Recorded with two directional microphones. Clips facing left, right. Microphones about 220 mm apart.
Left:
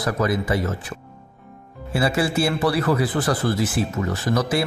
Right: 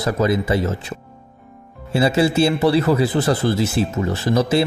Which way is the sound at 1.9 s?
25° right (ahead or behind).